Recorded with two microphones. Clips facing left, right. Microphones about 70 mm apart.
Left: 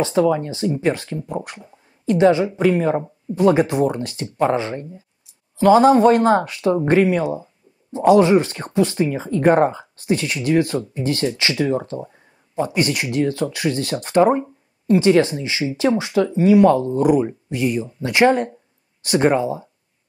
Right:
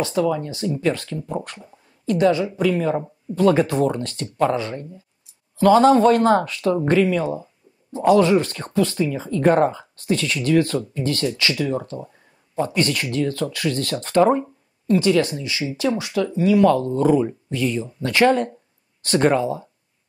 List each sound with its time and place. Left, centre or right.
0.0 s speech: left
0.5 s speech: left
2.0 s speech: left